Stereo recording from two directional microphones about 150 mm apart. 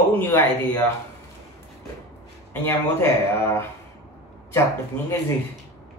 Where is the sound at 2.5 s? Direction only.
15° left (ahead or behind).